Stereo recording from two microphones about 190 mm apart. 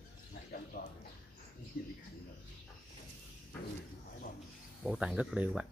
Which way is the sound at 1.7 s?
50° left (ahead or behind).